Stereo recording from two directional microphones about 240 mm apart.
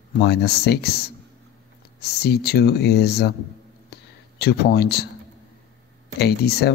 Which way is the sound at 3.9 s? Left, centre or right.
Left.